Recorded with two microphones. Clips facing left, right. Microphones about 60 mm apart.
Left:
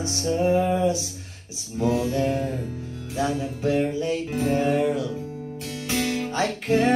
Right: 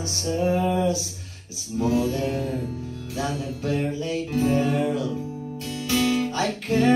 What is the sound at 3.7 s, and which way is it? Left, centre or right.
Music, left.